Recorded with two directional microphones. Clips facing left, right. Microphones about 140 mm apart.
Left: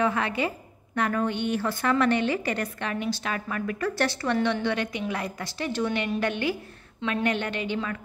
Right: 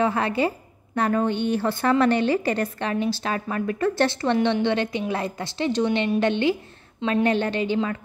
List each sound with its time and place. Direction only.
0.0 s a woman's voice: 30° right (ahead or behind)